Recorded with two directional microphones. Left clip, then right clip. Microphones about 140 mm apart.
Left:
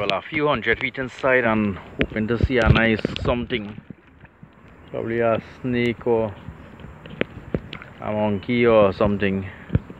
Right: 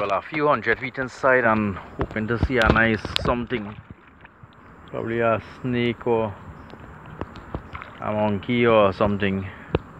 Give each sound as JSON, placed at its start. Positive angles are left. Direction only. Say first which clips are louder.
{"t": 0.3, "sound": "speech", "louder": "even", "side_deg": 25}
{"t": 1.1, "sound": "speech", "louder": "right 1 dB", "side_deg": 5}
{"t": 1.4, "sound": "speech", "louder": "right 1 dB", "side_deg": 25}
{"t": 4.9, "sound": "speech", "louder": "left 1 dB", "side_deg": 30}
{"t": 8.0, "sound": "speech", "louder": "even", "side_deg": 30}